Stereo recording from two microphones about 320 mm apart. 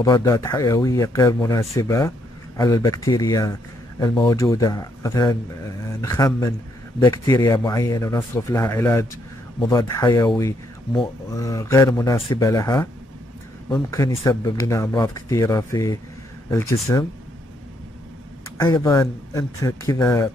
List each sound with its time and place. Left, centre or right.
0.0 s speech: centre
18.6 s speech: centre